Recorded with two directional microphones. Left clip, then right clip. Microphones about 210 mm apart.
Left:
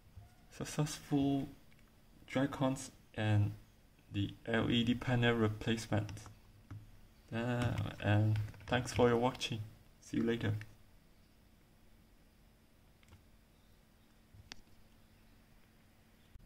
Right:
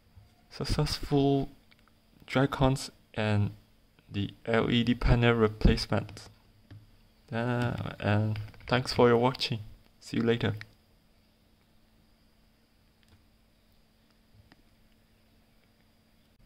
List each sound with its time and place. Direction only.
0.5 s speech: 30° right (ahead or behind)
1.0 s speech: 45° right (ahead or behind)
7.2 s speech: 35° right (ahead or behind)